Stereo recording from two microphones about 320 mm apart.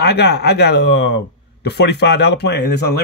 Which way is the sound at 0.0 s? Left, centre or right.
Left.